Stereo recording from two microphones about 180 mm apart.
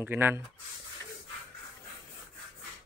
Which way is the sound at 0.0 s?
10° right (ahead or behind).